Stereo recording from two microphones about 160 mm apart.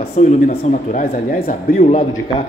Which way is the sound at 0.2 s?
50° left (ahead or behind).